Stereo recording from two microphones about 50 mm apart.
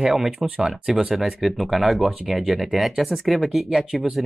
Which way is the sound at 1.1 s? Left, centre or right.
Centre.